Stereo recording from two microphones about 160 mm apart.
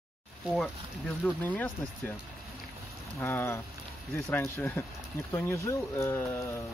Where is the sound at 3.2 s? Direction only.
15° left (ahead or behind).